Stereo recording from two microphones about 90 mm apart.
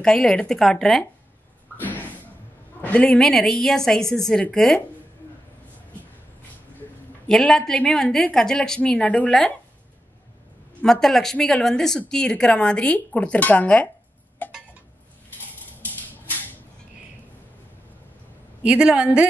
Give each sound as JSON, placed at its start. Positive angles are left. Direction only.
{"t": 0.0, "sound": "a woman's voice", "side_deg": 5}
{"t": 1.8, "sound": "a sound", "side_deg": 20}
{"t": 2.8, "sound": "a woman's voice", "side_deg": 15}
{"t": 3.1, "sound": "a woman's voice", "side_deg": 5}
{"t": 7.2, "sound": "a woman's voice", "side_deg": 5}
{"t": 10.8, "sound": "a woman's voice", "side_deg": 5}
{"t": 14.4, "sound": "a sound", "side_deg": 20}
{"t": 18.6, "sound": "a woman's voice", "side_deg": -10}